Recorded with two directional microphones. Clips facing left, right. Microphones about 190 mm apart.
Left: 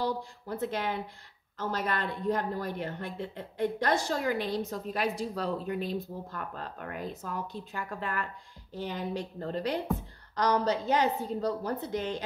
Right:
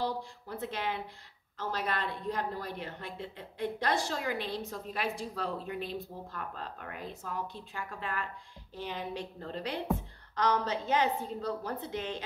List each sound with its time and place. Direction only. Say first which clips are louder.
0.0 s a woman's voice: left 2 dB; 45° left (ahead or behind)